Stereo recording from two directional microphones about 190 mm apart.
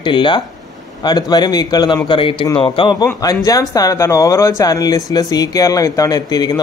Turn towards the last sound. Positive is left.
turn(degrees=20)  # may be behind; listen again after turning